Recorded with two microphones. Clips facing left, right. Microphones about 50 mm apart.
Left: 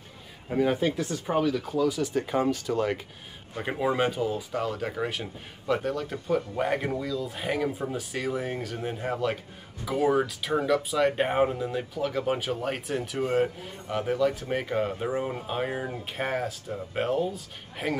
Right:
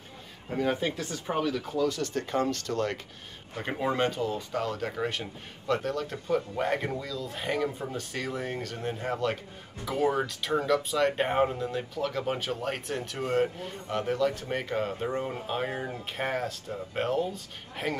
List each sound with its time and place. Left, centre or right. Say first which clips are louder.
0.5 s speech: left 4 dB; centre